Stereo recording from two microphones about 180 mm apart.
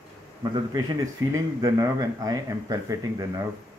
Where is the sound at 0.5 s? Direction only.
20° right (ahead or behind).